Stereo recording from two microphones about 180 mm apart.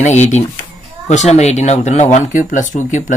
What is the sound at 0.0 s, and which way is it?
Speech, 40° left (ahead or behind).